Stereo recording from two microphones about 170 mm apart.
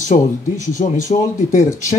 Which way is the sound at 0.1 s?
45° left (ahead or behind).